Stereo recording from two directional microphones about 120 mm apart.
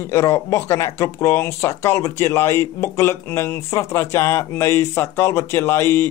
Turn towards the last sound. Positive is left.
turn(degrees=20)  # may be behind; listen again after turning